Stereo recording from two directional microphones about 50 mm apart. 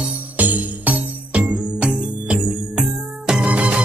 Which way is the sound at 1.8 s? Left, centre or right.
Centre.